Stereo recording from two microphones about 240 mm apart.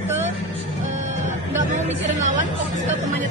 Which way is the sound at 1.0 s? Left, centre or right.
Right.